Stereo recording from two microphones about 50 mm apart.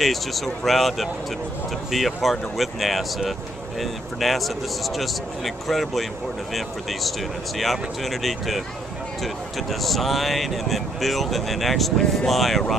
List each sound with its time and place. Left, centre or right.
0.0 s speech: centre